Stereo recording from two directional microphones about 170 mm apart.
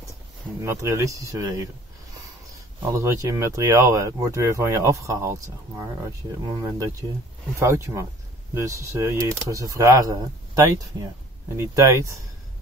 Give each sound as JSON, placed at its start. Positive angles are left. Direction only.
{"t": 0.7, "sound": "speech", "side_deg": -15}
{"t": 2.9, "sound": "speech", "side_deg": -15}
{"t": 6.5, "sound": "speech", "side_deg": -20}